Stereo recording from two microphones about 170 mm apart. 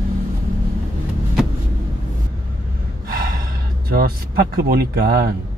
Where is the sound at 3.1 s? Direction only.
60° right (ahead or behind).